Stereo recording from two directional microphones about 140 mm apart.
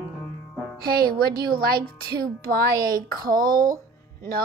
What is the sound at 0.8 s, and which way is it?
A woman's voice, 90° right.